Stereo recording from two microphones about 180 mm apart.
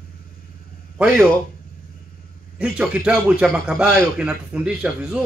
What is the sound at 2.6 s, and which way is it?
A man's voice, 5° right (ahead or behind).